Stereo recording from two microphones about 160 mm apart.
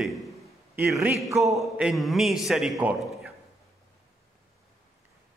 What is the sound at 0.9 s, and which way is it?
Speech, 10° right (ahead or behind).